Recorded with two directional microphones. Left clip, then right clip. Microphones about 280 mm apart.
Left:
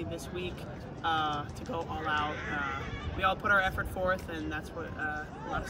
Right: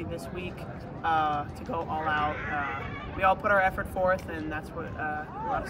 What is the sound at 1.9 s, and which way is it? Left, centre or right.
Speech, centre.